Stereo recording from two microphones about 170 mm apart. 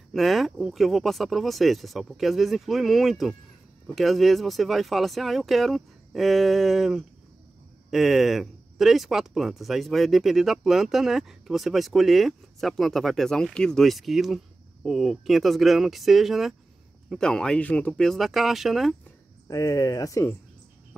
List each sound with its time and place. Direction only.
0.1 s speech: centre (ahead or behind)
19.4 s speech: 20° left (ahead or behind)